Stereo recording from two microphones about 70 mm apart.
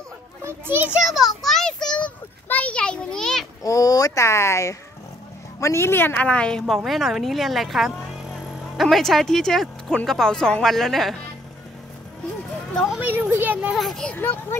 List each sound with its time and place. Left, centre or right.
0.4 s children playing: right
1.0 s speech: centre
1.4 s child singing: centre
2.4 s a sound: left
3.6 s a sound: left
4.2 s a woman's voice: left
6.2 s a woman's voice: centre
6.7 s speech: centre
8.1 s music: centre
10.0 s speech: centre
13.0 s a child's voice: right
13.7 s speech: centre
14.1 s a woman's voice: left